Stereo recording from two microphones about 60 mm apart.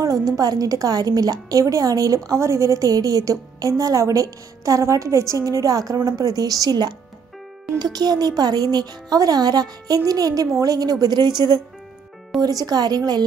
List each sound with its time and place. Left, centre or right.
0.0 s a woman's voice: right
7.9 s a woman's voice: right
12.4 s a woman's voice: right